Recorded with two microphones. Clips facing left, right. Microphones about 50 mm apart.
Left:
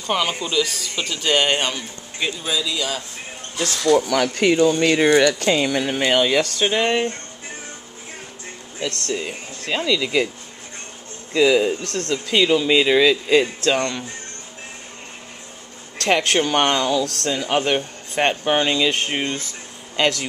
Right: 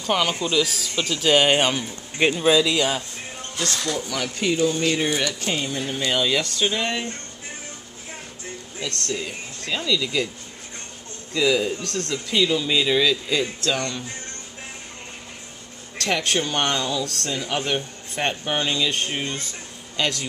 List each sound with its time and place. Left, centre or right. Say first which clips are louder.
0.0 s a man's voice: even; centre
2.1 s speech: right 7 dB; right
2.5 s speech: right 5 dB; right
3.5 s speech: left 5 dB; centre
4.1 s speech: left 7 dB; left
6.1 s speech: left 4 dB; left
8.7 s speech: left 4 dB; left
11.3 s speech: left 5 dB; left
16.0 s speech: left 5 dB; left